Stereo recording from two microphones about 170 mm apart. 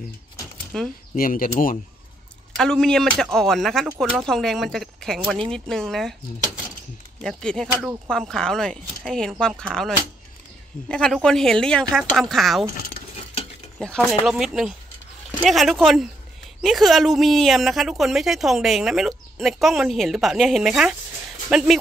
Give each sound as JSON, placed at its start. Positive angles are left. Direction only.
{"t": 0.7, "sound": "a woman's voice", "side_deg": 5}
{"t": 1.1, "sound": "speech", "side_deg": 55}
{"t": 2.5, "sound": "a woman's voice", "side_deg": 5}
{"t": 7.2, "sound": "a woman's voice", "side_deg": 5}
{"t": 13.7, "sound": "a woman's voice", "side_deg": 5}